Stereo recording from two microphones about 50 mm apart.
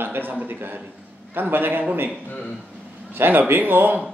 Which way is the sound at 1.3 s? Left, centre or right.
Right.